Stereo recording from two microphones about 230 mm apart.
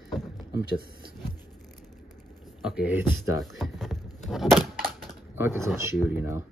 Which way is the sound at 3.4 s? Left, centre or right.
Centre.